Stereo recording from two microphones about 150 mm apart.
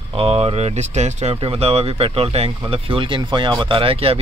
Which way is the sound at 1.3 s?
35° right (ahead or behind).